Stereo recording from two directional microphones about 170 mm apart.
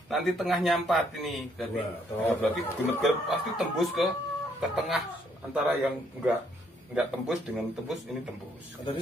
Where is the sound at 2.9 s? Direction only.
Centre (ahead or behind).